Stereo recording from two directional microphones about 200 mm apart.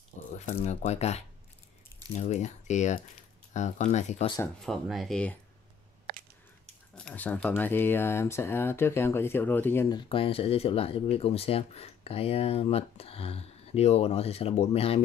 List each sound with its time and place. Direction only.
0.5 s speech: 35° left (ahead or behind)
4.4 s speech: centre (ahead or behind)
7.0 s speech: 5° left (ahead or behind); by 15.0 s 30° left (ahead or behind)